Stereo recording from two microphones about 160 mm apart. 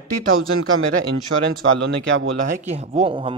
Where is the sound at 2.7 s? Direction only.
40° right (ahead or behind).